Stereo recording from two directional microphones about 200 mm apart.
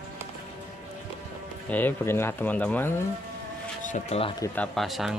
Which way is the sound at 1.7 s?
10° left (ahead or behind).